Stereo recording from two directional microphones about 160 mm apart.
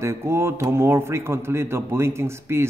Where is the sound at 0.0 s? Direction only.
15° right (ahead or behind).